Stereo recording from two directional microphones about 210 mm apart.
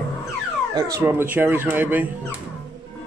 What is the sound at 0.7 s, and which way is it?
Speech, 15° right (ahead or behind).